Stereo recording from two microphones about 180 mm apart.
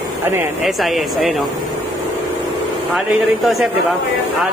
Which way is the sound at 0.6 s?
Centre (ahead or behind).